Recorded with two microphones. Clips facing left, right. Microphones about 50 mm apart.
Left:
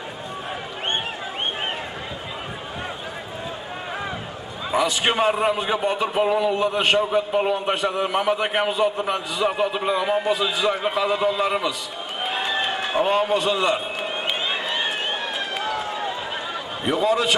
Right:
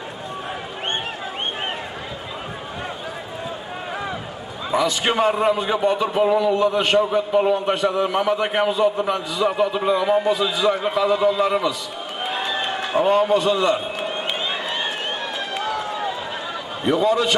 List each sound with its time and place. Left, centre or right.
4.7 s a man's voice: left
6.1 s a man's voice: left
12.2 s a sound: centre
13.0 s a man's voice: left
13.5 s a man's voice: centre
14.0 s run: centre
16.8 s a man's voice: left